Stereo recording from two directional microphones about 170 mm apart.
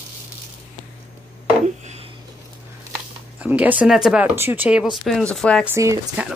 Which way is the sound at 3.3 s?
10° right (ahead or behind).